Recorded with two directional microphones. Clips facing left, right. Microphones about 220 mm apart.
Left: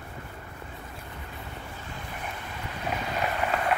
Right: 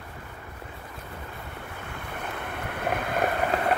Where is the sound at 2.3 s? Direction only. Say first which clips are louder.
Right 4 dB; 60° right (ahead or behind).